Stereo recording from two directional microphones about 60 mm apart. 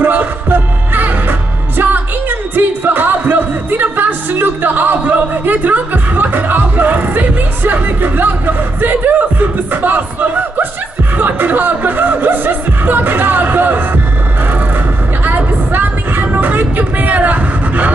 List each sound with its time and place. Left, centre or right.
0.0 s music: right
11.1 s speech: right
15.2 s music: right